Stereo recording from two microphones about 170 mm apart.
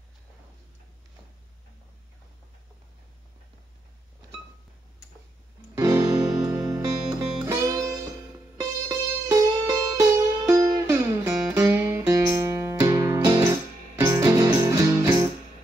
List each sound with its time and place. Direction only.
5.8 s music: 20° right (ahead or behind)